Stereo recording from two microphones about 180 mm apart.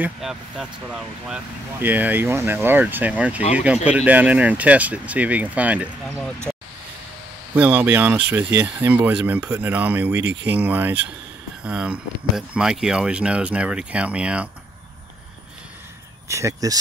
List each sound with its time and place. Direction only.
0.0 s speech: 5° right (ahead or behind)
6.0 s speech: 5° left (ahead or behind)
7.5 s speech: 10° right (ahead or behind)
10.2 s speech: 70° right (ahead or behind)
10.5 s speech: 10° right (ahead or behind)
16.3 s speech: 15° right (ahead or behind)